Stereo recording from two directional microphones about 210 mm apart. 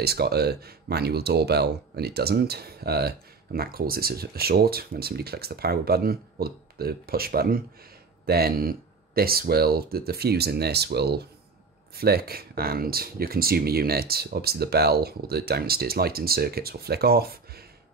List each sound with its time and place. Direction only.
0.0 s speech: 50° right (ahead or behind)